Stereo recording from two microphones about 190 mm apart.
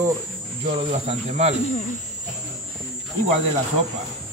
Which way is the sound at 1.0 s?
35° right (ahead or behind).